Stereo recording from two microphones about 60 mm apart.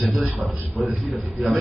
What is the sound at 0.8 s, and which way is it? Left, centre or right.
Speech, centre.